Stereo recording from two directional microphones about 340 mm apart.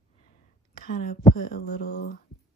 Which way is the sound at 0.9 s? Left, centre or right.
Left.